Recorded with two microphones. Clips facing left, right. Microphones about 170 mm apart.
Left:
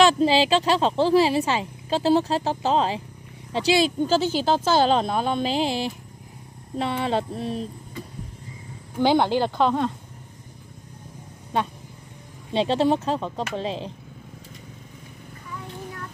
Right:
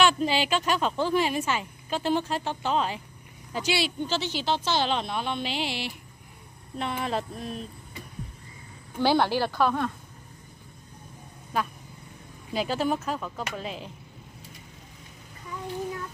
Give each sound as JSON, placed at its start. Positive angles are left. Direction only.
{"t": 0.0, "sound": "speech", "side_deg": 35}
{"t": 6.8, "sound": "speech", "side_deg": 30}
{"t": 9.0, "sound": "speech", "side_deg": 20}
{"t": 12.5, "sound": "speech", "side_deg": 30}